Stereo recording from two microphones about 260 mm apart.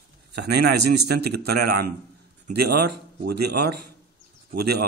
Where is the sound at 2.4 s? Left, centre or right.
Right.